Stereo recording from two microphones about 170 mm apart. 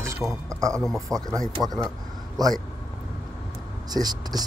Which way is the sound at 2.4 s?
20° right (ahead or behind).